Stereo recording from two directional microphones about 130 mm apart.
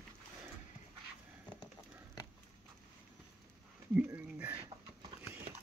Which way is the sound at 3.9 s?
10° right (ahead or behind).